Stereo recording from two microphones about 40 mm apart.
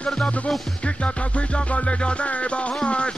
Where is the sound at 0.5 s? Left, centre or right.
Centre.